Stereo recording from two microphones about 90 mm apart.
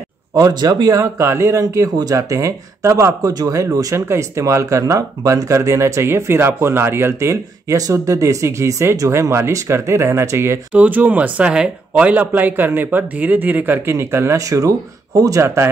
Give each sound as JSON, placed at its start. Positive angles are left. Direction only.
{"t": 0.4, "sound": "speech", "side_deg": -45}
{"t": 3.2, "sound": "speech", "side_deg": -45}
{"t": 10.7, "sound": "speech", "side_deg": -15}